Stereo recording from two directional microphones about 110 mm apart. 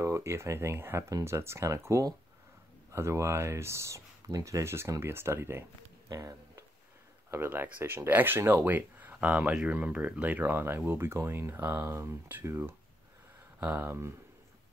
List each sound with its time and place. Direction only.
0.0 s speech: 25° right (ahead or behind)
7.2 s speech: 20° right (ahead or behind)